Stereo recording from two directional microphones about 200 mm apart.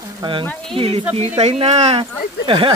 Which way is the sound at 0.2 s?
25° right (ahead or behind).